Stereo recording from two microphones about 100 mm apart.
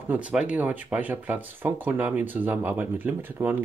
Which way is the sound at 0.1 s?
10° right (ahead or behind).